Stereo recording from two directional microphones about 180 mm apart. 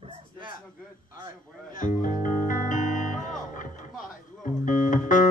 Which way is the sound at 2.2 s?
45° left (ahead or behind).